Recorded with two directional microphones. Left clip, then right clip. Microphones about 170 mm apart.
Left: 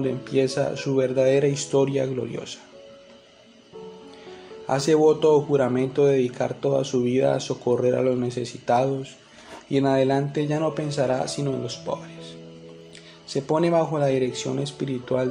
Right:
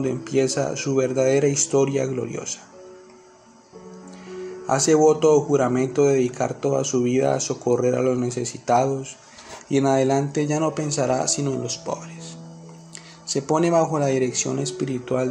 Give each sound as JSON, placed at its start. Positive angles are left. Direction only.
{"t": 0.0, "sound": "speech", "side_deg": -20}
{"t": 4.6, "sound": "speech", "side_deg": -25}